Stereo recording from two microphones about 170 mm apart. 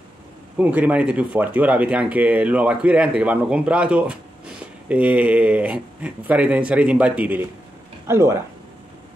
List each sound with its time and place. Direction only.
0.6 s speech: 10° right (ahead or behind)